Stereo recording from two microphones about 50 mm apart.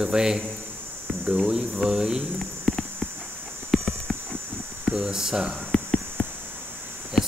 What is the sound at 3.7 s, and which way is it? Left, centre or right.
Clip-clop, centre.